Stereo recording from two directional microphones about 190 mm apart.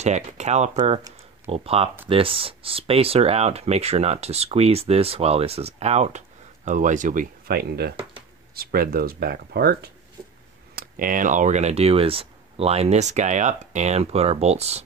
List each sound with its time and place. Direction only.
0.0 s speech: 35° right (ahead or behind)